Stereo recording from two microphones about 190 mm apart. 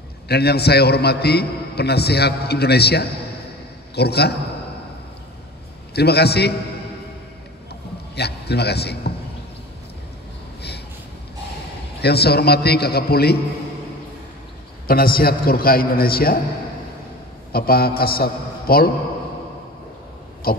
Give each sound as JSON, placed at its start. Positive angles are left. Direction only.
{"t": 0.3, "sound": "a man's voice", "side_deg": 55}
{"t": 5.9, "sound": "a man's voice", "side_deg": 60}
{"t": 8.2, "sound": "a man's voice", "side_deg": 60}
{"t": 12.0, "sound": "a man's voice", "side_deg": 60}
{"t": 14.9, "sound": "a man's voice", "side_deg": 50}
{"t": 17.5, "sound": "a man's voice", "side_deg": 55}